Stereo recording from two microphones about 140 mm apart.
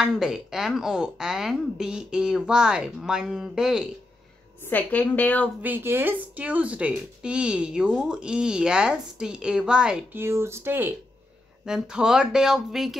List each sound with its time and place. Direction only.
0.0 s a woman's voice: 5° right (ahead or behind)
4.6 s a woman's voice: 10° left (ahead or behind)
5.6 s speech: 15° right (ahead or behind)
10.2 s a woman's voice: 20° right (ahead or behind); by 12.9 s centre (ahead or behind)